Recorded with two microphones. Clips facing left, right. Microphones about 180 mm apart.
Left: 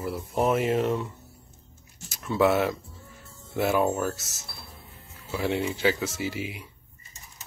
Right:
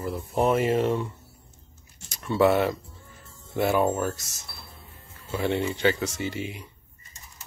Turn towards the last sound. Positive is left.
turn(degrees=5)  # may be behind; listen again after turning